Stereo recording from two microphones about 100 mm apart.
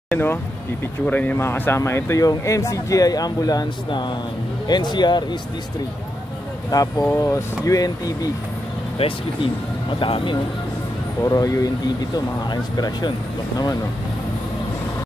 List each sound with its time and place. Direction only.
0.1 s speech: 20° left (ahead or behind); by 5.4 s 45° left (ahead or behind)
6.7 s speech: 35° left (ahead or behind)
8.9 s speech: 60° left (ahead or behind)
11.2 s speech: 35° left (ahead or behind)